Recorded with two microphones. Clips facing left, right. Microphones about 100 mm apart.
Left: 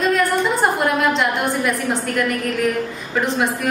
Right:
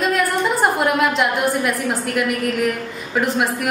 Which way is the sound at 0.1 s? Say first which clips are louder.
Left 1 dB; 5° right (ahead or behind).